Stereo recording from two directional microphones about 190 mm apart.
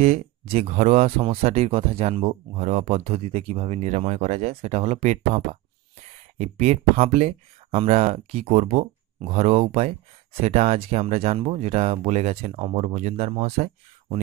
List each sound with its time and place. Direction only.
0.0 s speech: 35° right (ahead or behind)